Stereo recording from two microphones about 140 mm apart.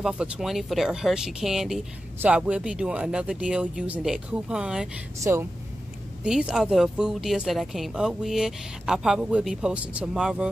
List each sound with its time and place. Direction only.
0.0 s speech: 5° right (ahead or behind)
5.2 s speech: 20° right (ahead or behind)
6.2 s speech: 5° right (ahead or behind)